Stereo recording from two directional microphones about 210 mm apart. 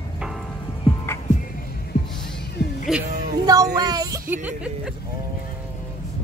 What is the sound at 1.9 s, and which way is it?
Music, 30° left (ahead or behind).